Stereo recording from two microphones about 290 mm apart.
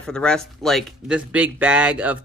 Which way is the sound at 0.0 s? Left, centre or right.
Centre.